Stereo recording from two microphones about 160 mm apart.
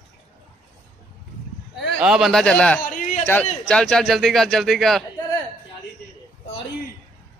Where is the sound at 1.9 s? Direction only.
5° right (ahead or behind).